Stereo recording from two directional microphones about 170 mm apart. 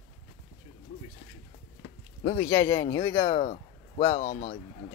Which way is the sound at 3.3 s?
40° left (ahead or behind).